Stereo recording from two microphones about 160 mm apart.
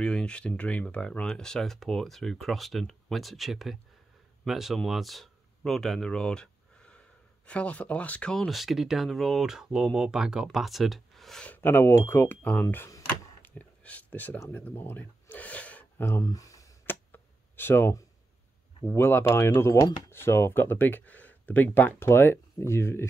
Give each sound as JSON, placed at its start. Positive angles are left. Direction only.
{"t": 0.0, "sound": "speech", "side_deg": 5}
{"t": 12.6, "sound": "a sound", "side_deg": 20}
{"t": 18.9, "sound": "speech", "side_deg": 15}